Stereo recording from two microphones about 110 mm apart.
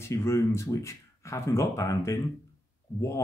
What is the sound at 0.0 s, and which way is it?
Speech, 25° left (ahead or behind).